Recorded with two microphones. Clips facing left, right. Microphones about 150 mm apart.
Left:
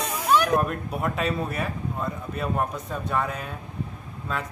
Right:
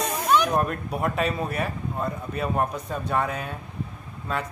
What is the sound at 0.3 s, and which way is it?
Speech, 5° left (ahead or behind).